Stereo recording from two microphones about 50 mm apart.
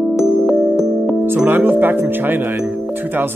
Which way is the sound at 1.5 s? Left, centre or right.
Right.